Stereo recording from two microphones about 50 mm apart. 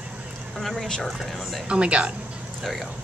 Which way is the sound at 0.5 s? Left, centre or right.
Centre.